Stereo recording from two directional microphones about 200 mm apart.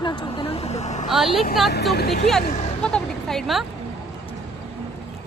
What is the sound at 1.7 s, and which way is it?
Speech, 55° left (ahead or behind).